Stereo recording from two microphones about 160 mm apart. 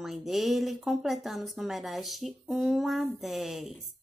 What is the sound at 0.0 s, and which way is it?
Speech, centre (ahead or behind).